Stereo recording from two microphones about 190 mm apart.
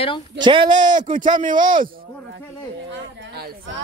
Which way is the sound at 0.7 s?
40° right (ahead or behind).